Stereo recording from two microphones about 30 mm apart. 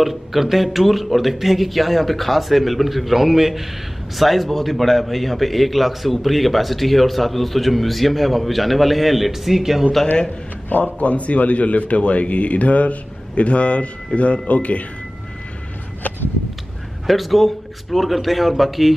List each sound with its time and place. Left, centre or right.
0.0 s a man's voice: centre
11.0 s a man's voice: left
17.0 s a man's voice: centre